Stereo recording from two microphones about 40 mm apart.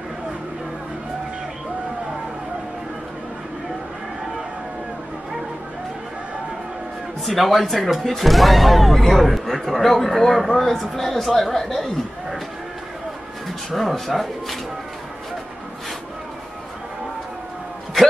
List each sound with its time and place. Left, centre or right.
7.2 s speech: centre
13.7 s speech: centre